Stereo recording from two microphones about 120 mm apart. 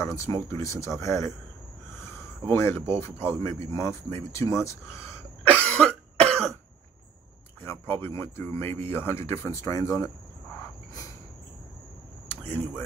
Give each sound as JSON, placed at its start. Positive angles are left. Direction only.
{"t": 0.0, "sound": "speech", "side_deg": 25}
{"t": 2.5, "sound": "speech", "side_deg": 20}
{"t": 5.4, "sound": "cough", "side_deg": 10}
{"t": 7.6, "sound": "speech", "side_deg": 20}
{"t": 12.3, "sound": "a sound", "side_deg": 15}